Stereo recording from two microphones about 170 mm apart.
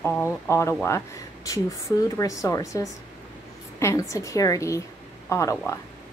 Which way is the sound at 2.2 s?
20° left (ahead or behind).